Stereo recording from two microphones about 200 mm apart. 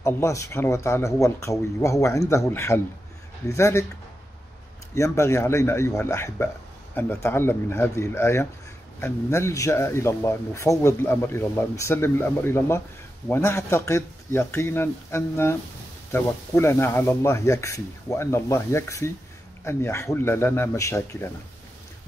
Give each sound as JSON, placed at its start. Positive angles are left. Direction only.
{"t": 0.0, "sound": "a man's voice", "side_deg": 15}
{"t": 4.9, "sound": "a man's voice", "side_deg": 15}